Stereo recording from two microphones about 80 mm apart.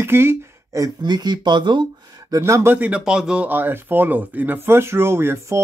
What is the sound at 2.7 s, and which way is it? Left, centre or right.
Speech, centre.